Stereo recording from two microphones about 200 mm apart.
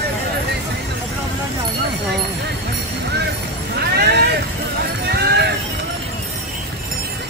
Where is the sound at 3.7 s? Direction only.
55° right (ahead or behind).